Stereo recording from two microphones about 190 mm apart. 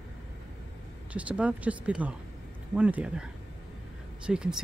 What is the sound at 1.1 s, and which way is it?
Speech, 5° right (ahead or behind).